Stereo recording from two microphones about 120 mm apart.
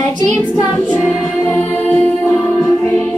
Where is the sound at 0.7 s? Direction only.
15° left (ahead or behind).